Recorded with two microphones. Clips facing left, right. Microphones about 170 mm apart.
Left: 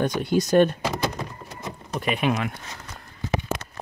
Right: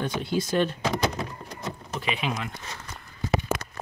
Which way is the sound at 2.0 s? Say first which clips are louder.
Left 6 dB; 50° left (ahead or behind).